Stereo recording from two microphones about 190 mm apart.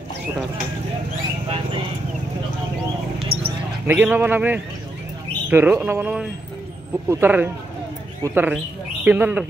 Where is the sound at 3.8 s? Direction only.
10° right (ahead or behind).